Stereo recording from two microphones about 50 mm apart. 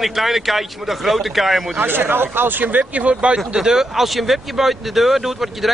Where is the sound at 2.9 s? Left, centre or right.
Right.